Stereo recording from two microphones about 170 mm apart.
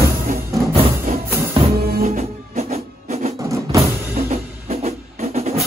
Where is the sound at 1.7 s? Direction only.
65° right (ahead or behind).